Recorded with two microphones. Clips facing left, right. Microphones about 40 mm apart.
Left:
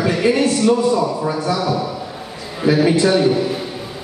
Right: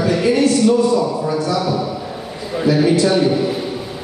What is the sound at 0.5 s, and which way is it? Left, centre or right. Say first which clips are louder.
A man's voice: right 1 dB; centre.